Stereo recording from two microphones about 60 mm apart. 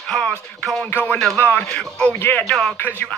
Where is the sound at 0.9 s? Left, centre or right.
Left.